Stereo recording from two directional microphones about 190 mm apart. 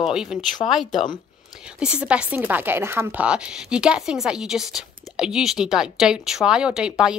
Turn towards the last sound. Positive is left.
turn(degrees=-5)  # may be behind; listen again after turning